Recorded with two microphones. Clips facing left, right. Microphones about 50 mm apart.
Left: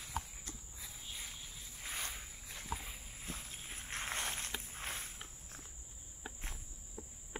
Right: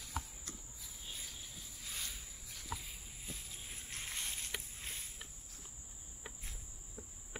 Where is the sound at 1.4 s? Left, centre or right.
Left.